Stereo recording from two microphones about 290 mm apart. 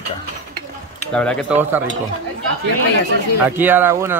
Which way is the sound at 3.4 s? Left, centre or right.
Centre.